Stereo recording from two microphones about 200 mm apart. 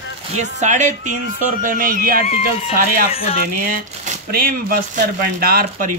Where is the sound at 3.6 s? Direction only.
40° right (ahead or behind).